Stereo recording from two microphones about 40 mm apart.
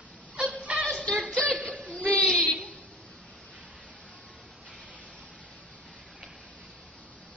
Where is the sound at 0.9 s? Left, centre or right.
Left.